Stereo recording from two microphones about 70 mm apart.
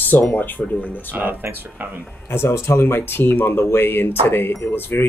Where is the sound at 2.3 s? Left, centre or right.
Left.